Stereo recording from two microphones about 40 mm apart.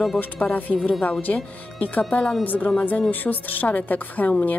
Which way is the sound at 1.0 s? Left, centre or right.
Left.